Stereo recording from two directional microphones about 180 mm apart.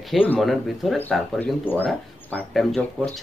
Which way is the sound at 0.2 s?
5° left (ahead or behind).